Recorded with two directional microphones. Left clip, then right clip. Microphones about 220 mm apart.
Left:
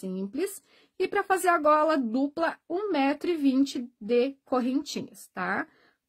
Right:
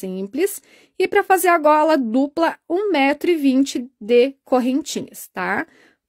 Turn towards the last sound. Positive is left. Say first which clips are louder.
# right 8 dB
turn(degrees=-35)  # may be behind; listen again after turning